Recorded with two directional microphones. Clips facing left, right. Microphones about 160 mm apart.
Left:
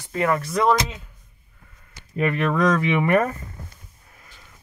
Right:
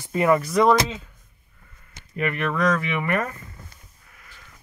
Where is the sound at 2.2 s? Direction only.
30° left (ahead or behind).